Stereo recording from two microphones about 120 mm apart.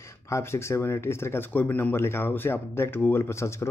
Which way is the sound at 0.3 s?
20° left (ahead or behind).